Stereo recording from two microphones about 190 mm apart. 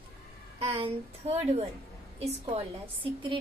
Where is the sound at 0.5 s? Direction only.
30° right (ahead or behind).